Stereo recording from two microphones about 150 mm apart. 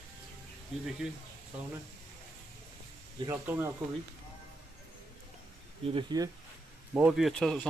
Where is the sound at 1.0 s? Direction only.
5° right (ahead or behind).